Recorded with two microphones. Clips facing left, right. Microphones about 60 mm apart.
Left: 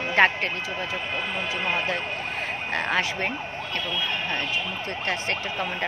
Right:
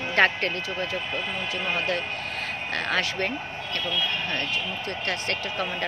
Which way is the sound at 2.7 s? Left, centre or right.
Left.